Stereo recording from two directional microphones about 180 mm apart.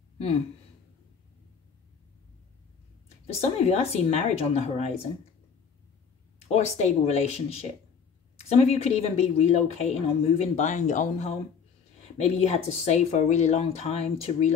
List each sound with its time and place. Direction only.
3.3 s speech: 35° left (ahead or behind)
6.8 s speech: 40° left (ahead or behind)